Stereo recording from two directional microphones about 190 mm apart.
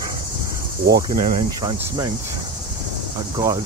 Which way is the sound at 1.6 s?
25° right (ahead or behind).